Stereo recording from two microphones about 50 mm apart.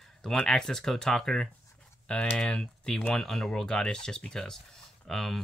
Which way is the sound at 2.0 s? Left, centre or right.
Left.